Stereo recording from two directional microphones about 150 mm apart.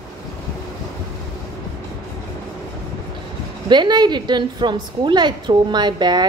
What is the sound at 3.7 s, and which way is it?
A woman's voice, 30° right (ahead or behind).